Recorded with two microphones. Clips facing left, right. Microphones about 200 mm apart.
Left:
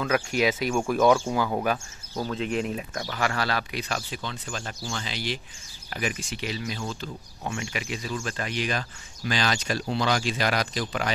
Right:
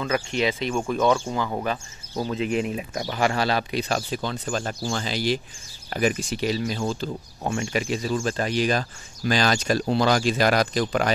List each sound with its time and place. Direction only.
0.0 s speech: 5° left (ahead or behind)
2.3 s speech: 5° right (ahead or behind)
2.9 s speech: 20° right (ahead or behind); by 11.1 s 45° right (ahead or behind)